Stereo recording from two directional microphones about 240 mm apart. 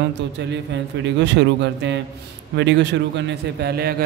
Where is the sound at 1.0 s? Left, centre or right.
Right.